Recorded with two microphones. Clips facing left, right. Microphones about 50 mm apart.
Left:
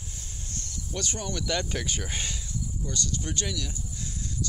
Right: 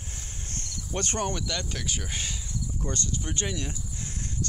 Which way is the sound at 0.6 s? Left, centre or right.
Right.